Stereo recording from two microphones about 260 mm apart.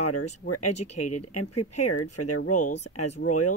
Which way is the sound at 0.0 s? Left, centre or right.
Left.